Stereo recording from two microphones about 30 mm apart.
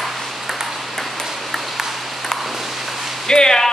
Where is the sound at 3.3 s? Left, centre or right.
Left.